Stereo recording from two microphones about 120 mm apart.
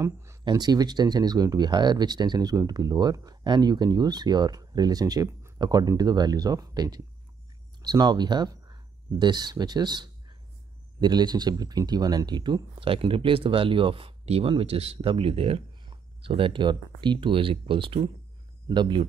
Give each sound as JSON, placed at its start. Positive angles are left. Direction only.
{"t": 0.0, "sound": "speech", "side_deg": -25}
{"t": 0.5, "sound": "speech", "side_deg": -35}